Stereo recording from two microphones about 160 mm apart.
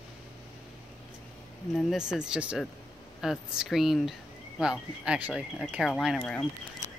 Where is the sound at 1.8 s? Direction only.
Centre (ahead or behind).